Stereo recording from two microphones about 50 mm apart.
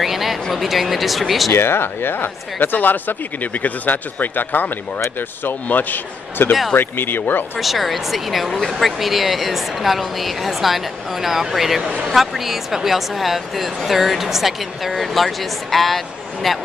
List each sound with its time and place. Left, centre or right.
0.0 s speech: centre
1.5 s speech: left
7.5 s speech: centre